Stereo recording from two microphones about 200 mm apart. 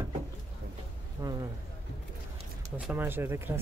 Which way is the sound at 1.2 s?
15° right (ahead or behind).